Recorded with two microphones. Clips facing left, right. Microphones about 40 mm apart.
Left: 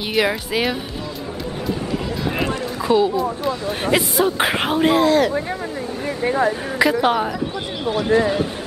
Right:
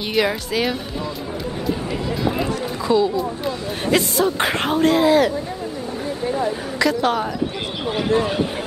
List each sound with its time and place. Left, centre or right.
0.1 s speech: centre
2.9 s speech: left
5.0 s speech: centre
6.0 s speech: left
6.8 s speech: centre